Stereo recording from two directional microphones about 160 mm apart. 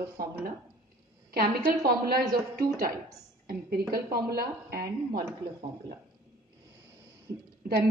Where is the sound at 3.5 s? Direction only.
75° right (ahead or behind).